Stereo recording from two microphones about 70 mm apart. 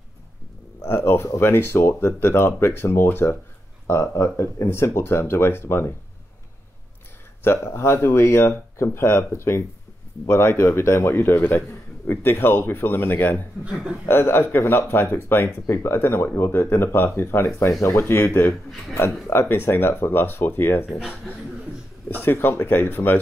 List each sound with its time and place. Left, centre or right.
0.8 s speech: left
7.4 s speech: left
22.2 s speech: left